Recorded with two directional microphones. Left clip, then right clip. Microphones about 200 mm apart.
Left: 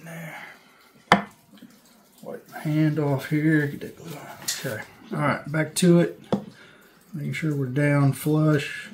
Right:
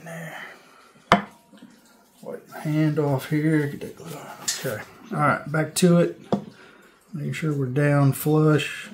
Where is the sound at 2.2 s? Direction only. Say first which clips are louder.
Right 1 dB; 15° right (ahead or behind).